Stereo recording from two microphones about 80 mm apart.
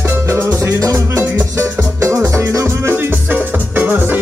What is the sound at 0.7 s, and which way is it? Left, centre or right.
Music, right.